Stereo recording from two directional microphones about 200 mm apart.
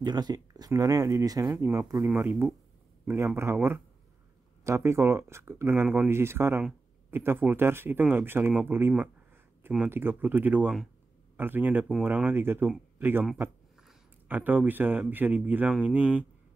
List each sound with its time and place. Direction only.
0.0 s speech: 20° right (ahead or behind)